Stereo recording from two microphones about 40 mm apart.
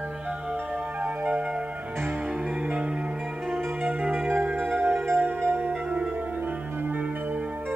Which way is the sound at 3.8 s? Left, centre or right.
Right.